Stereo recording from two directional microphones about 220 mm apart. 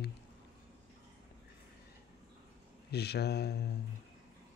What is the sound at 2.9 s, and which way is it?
Speech, 45° left (ahead or behind).